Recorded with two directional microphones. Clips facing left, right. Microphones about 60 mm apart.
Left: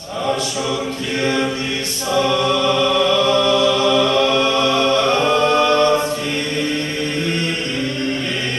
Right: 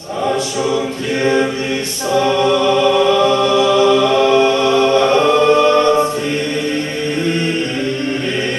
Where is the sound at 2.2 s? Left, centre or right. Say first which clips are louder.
Right 4 dB; right.